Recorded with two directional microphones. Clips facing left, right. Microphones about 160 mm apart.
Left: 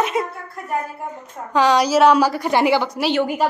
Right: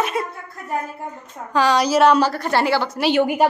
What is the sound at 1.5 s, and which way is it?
A woman's voice, 15° left (ahead or behind).